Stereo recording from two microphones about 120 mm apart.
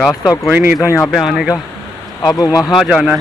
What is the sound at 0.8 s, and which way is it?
Speech, 25° left (ahead or behind).